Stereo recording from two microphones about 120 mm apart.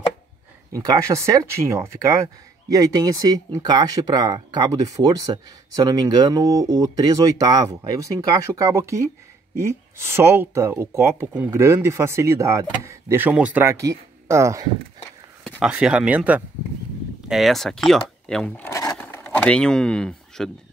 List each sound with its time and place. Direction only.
0.7 s speech: 30° right (ahead or behind)
13.7 s speech: 25° right (ahead or behind)
15.6 s speech: 10° right (ahead or behind)
17.3 s speech: centre (ahead or behind)
18.5 s speech: 15° left (ahead or behind)
18.9 s a sound: 10° left (ahead or behind)